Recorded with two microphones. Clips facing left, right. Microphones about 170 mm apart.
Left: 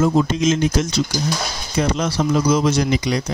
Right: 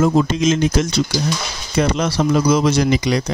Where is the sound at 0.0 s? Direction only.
80° right.